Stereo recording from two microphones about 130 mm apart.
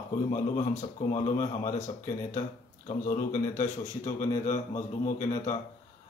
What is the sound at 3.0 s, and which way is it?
A man's voice, 80° left.